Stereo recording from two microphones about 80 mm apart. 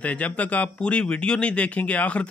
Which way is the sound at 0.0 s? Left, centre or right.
Centre.